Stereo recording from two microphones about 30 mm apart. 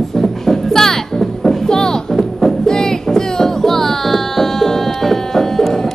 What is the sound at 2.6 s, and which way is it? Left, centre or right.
Music, centre.